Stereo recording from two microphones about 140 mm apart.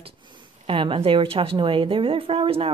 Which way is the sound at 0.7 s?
40° right (ahead or behind).